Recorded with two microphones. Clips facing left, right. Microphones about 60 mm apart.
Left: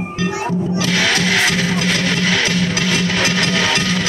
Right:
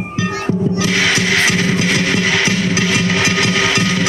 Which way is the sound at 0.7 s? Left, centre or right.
Centre.